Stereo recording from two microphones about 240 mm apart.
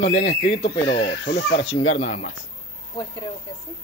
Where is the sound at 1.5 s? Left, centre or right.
Left.